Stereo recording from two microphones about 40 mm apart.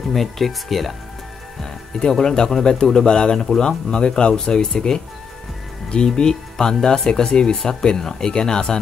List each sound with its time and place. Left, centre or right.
0.1 s speech: centre
1.6 s speech: centre
6.1 s speech: centre